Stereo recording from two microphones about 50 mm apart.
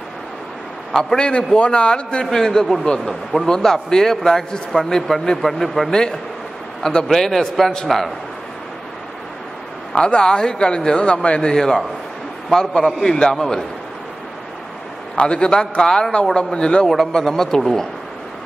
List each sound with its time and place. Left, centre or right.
0.9 s a man's voice: centre
2.2 s a man's voice: centre
5.9 s a man's voice: centre
7.1 s a man's voice: centre
9.9 s a man's voice: centre
11.5 s a man's voice: centre
15.1 s a man's voice: left
16.8 s a man's voice: centre